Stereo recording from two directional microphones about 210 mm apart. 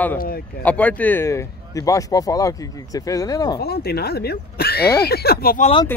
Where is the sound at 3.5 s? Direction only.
50° left (ahead or behind).